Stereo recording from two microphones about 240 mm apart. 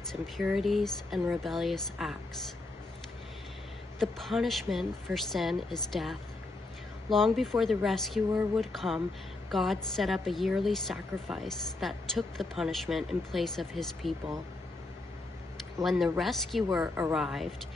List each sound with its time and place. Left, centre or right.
0.1 s a woman's voice: centre
4.0 s a woman's voice: centre
15.8 s a woman's voice: centre